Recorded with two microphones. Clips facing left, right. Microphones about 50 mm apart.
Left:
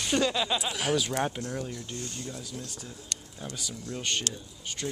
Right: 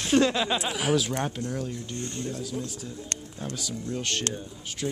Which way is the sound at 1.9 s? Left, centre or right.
Right.